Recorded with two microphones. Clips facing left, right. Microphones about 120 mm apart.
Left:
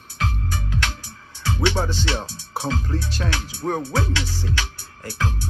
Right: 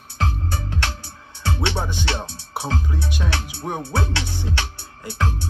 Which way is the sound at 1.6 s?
15° right (ahead or behind).